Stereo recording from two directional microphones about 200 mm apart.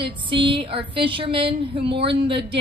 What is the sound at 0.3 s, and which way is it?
Speech, 25° right (ahead or behind).